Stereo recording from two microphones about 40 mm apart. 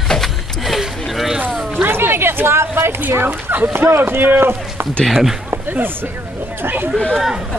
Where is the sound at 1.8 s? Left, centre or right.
Right.